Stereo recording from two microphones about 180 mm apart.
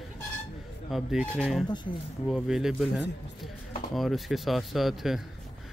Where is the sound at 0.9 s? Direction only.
Centre (ahead or behind).